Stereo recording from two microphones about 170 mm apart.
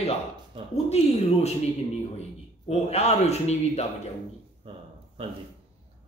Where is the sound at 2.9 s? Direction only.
40° left (ahead or behind).